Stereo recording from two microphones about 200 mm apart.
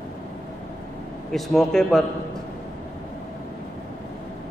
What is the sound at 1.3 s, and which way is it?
Speech, centre (ahead or behind).